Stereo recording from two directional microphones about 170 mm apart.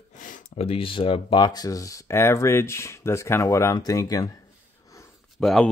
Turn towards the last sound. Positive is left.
turn(degrees=0)  # may be behind; listen again after turning